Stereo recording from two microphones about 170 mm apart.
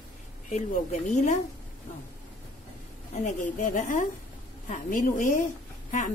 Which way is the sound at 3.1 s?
45° left (ahead or behind).